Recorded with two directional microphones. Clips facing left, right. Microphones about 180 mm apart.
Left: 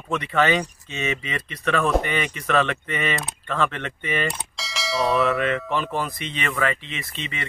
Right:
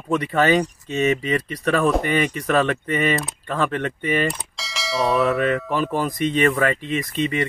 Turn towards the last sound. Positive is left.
turn(degrees=-45)  # may be behind; listen again after turning